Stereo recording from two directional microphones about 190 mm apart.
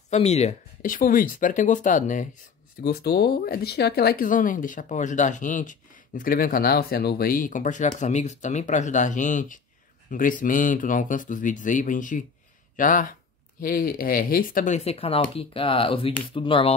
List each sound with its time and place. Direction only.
0.1 s speech: 35° left (ahead or behind)
2.8 s speech: 55° left (ahead or behind); by 16.7 s 30° left (ahead or behind)